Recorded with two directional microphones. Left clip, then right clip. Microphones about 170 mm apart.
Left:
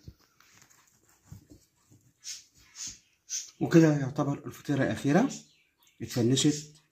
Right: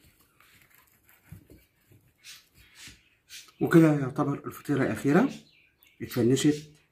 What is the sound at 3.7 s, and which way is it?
A man's voice, 15° left (ahead or behind).